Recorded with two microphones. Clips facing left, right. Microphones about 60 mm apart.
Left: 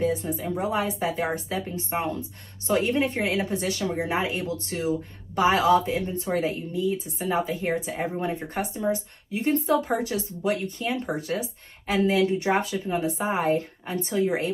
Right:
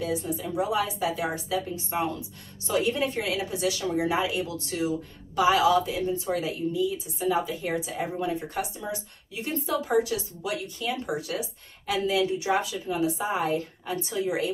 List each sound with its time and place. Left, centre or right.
0.0 s speech: left